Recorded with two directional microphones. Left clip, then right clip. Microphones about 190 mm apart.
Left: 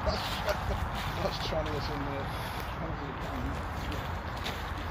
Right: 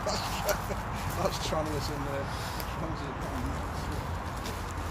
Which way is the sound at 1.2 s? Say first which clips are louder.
Right 3 dB; 35° right (ahead or behind).